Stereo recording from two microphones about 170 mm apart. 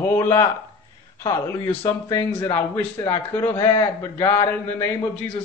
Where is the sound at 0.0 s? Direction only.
15° left (ahead or behind).